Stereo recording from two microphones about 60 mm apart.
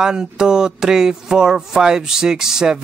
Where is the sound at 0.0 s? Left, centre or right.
Centre.